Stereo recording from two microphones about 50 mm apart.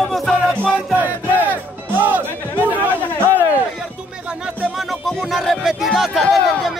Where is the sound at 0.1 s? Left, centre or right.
Centre.